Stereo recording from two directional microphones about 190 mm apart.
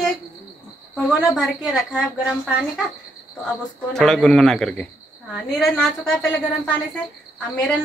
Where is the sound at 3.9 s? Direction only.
Centre (ahead or behind).